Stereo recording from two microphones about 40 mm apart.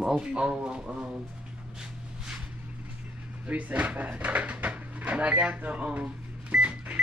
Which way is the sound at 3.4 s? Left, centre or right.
Right.